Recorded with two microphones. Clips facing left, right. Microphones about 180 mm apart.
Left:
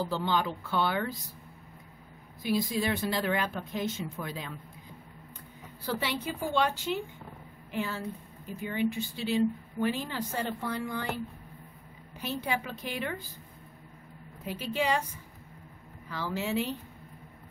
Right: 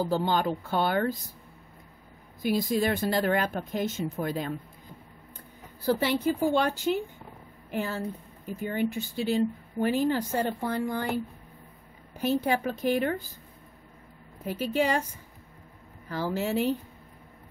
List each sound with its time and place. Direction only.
0.0 s speech: 45° right (ahead or behind)
2.4 s speech: 45° right (ahead or behind)
5.9 s speech: 45° right (ahead or behind)
12.2 s speech: 45° right (ahead or behind)
14.4 s speech: 45° right (ahead or behind)
16.1 s speech: 45° right (ahead or behind)